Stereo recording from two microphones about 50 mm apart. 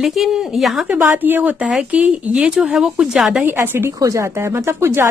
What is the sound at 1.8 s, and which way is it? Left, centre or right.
Speech, right.